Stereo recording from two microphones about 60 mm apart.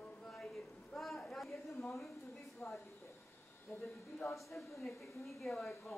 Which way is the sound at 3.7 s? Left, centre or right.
Left.